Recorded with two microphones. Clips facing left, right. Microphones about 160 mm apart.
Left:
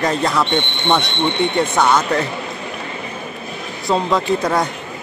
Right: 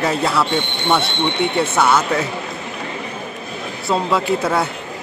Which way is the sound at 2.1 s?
Centre (ahead or behind).